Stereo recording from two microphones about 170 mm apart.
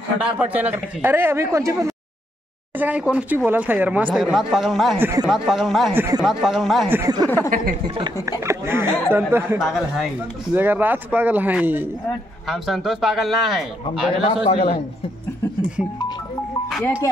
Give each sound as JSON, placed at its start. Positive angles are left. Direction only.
{"t": 0.2, "sound": "speech", "side_deg": -5}
{"t": 2.8, "sound": "a man's voice", "side_deg": -5}
{"t": 4.9, "sound": "speech", "side_deg": -10}
{"t": 5.3, "sound": "a man's voice", "side_deg": 0}
{"t": 6.9, "sound": "speech", "side_deg": -20}
{"t": 7.2, "sound": "speech", "side_deg": 10}
{"t": 8.0, "sound": "speech", "side_deg": -15}
{"t": 12.4, "sound": "a man's voice", "side_deg": 0}
{"t": 14.2, "sound": "a man's voice", "side_deg": 35}